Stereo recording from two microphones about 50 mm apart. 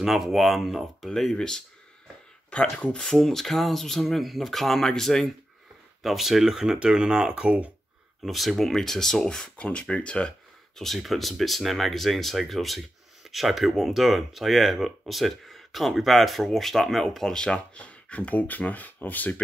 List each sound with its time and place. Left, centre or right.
0.0 s speech: centre
1.3 s speech: centre
2.8 s speech: centre
6.0 s speech: centre; by 7.7 s right
8.2 s speech: centre; by 10.3 s left
11.1 s speech: centre
17.7 s speech: left